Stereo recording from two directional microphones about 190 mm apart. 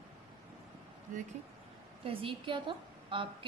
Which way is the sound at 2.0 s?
25° right (ahead or behind).